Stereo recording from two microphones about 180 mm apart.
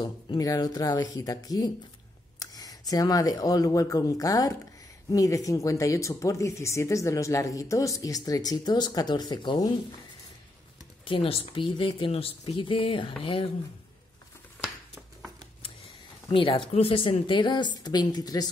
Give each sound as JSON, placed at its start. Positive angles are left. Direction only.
{"t": 0.0, "sound": "speech", "side_deg": 20}
{"t": 11.1, "sound": "speech", "side_deg": 30}
{"t": 16.3, "sound": "speech", "side_deg": 30}